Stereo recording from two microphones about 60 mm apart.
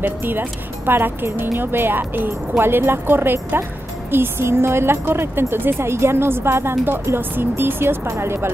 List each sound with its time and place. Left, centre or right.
0.0 s a woman's voice: right
7.2 s a woman's voice: right